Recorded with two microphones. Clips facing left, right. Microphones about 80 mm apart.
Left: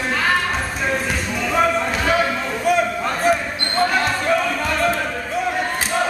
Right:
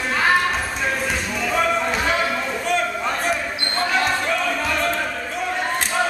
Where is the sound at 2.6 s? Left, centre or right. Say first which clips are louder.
Left 6 dB; centre.